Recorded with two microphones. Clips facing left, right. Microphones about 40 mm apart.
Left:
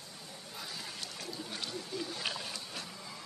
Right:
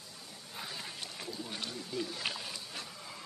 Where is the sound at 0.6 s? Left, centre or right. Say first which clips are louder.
Right 1 dB; right.